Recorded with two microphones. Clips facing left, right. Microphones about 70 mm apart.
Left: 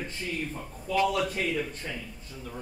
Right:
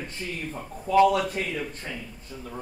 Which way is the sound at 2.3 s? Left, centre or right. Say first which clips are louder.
Right 5 dB; right.